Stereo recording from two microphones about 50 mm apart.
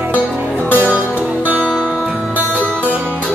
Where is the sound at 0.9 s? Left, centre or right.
Right.